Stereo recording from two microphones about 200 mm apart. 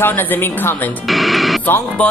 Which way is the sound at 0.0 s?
10° left (ahead or behind).